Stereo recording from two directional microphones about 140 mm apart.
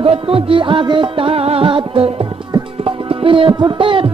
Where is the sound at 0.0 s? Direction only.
40° right (ahead or behind).